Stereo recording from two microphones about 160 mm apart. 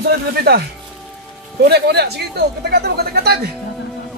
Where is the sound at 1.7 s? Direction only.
90° right.